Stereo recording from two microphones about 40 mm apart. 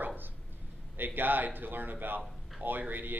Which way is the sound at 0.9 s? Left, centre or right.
Right.